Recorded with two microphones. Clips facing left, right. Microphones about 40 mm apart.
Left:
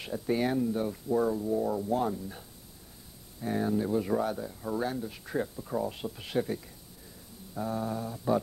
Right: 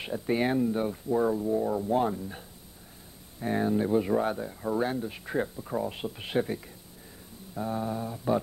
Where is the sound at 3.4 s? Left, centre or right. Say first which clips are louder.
Right 2 dB; right.